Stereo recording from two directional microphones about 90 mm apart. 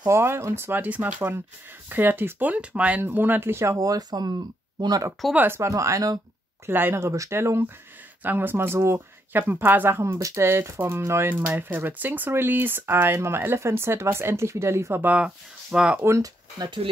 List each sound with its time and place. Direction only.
0.1 s speech: 30° right (ahead or behind); by 5.0 s 45° right (ahead or behind)
5.3 s speech: 20° right (ahead or behind)
5.6 s speech: 35° right (ahead or behind)
6.6 s speech: 25° right (ahead or behind)
15.0 s speech: 10° right (ahead or behind)
16.2 s speech: 50° right (ahead or behind)